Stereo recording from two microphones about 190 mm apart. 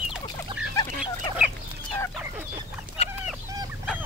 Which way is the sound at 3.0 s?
30° left (ahead or behind).